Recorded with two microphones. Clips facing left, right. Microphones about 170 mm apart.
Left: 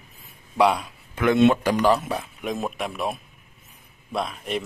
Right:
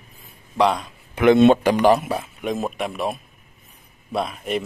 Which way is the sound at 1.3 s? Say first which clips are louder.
Right 4 dB; 30° right (ahead or behind).